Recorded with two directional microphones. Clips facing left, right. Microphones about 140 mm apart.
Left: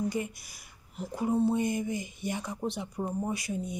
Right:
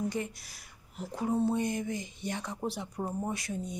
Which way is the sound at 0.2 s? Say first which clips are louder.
Left 2 dB; 5° left (ahead or behind).